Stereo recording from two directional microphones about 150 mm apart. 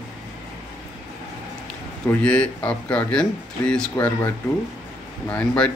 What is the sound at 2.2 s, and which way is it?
Speech, 10° left (ahead or behind).